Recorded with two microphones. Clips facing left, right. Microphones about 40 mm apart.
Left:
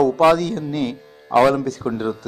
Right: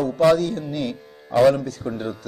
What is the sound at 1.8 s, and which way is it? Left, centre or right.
Speech, left.